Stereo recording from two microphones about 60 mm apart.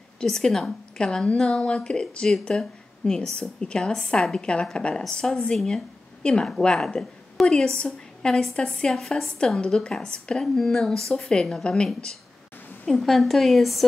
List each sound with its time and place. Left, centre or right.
0.2 s a woman's voice: centre
12.8 s a woman's voice: centre